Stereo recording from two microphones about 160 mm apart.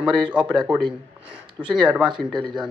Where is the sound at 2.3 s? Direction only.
30° right (ahead or behind).